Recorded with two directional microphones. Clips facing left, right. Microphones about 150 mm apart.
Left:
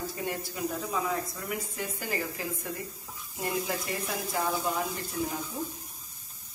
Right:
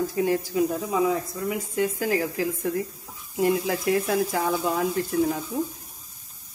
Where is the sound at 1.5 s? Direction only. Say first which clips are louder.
Right 12 dB; 90° right.